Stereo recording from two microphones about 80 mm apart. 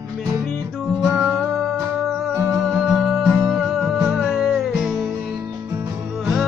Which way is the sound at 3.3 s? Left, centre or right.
Right.